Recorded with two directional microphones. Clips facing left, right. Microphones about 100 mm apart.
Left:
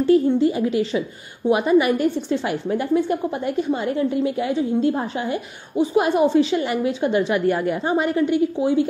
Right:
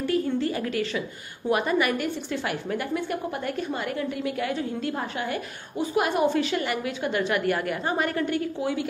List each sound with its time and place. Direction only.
0.0 s a woman's voice: 25° left (ahead or behind)